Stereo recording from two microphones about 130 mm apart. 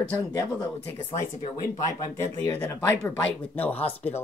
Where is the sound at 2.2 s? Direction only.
20° left (ahead or behind).